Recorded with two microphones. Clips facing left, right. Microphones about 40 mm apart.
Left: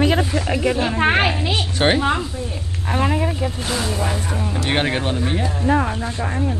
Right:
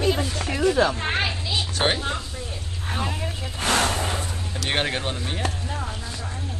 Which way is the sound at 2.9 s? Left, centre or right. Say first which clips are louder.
Left 9 dB; left.